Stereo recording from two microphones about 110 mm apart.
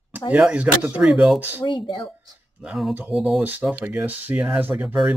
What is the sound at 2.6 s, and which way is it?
Speech, 5° right (ahead or behind).